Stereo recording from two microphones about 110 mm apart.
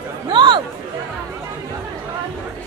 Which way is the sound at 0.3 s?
45° right (ahead or behind).